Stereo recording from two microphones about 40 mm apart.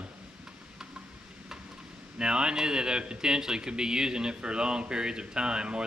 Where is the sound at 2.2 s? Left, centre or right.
Right.